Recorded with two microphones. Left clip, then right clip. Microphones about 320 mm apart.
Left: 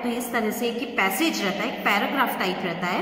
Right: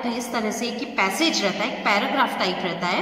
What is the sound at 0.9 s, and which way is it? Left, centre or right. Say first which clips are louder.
A woman's voice: right 3 dB; right.